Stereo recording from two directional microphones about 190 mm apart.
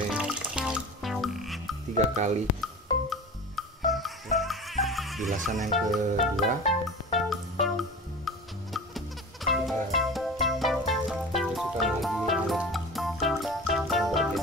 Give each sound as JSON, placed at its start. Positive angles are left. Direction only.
{"t": 0.1, "sound": "music", "side_deg": -5}
{"t": 2.0, "sound": "speech", "side_deg": -40}
{"t": 2.6, "sound": "music", "side_deg": 0}